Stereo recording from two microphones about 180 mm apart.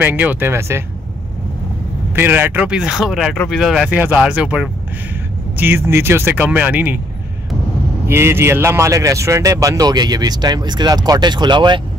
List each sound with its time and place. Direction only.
0.0 s speech: 10° right (ahead or behind)
2.1 s speech: 10° right (ahead or behind)
8.1 s speech: 15° right (ahead or behind)